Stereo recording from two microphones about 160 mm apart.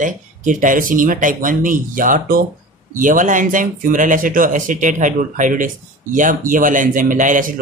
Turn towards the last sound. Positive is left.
turn(degrees=-55)  # may be behind; listen again after turning